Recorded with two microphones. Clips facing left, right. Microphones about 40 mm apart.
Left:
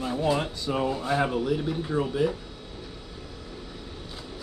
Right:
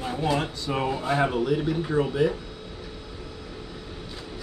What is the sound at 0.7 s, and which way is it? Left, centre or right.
Speech, right.